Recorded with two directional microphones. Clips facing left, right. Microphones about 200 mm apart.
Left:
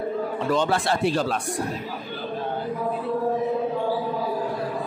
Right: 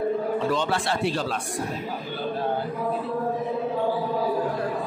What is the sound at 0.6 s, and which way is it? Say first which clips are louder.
Speech: left 3 dB; 45° left (ahead or behind).